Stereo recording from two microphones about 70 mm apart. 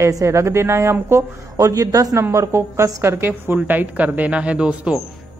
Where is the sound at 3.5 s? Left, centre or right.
Right.